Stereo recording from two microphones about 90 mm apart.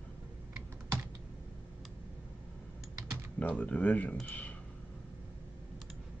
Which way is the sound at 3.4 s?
15° left (ahead or behind).